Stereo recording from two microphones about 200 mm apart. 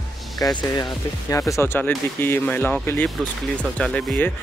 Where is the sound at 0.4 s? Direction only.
20° left (ahead or behind).